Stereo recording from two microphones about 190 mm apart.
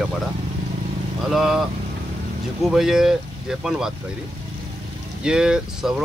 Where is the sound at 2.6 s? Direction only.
Centre (ahead or behind).